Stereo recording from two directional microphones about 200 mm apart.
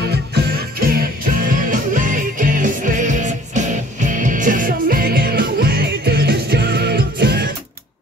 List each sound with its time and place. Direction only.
0.3 s music: 50° right (ahead or behind)